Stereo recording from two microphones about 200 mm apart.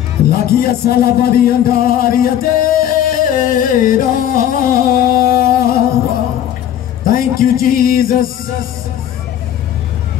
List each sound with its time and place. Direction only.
0.3 s music: 50° left (ahead or behind)
7.1 s music: 45° left (ahead or behind)